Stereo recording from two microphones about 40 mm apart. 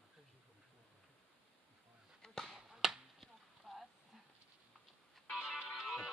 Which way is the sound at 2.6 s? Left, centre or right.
Centre.